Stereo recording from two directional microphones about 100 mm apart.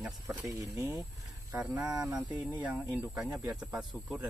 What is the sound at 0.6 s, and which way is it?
Speech, 30° right (ahead or behind).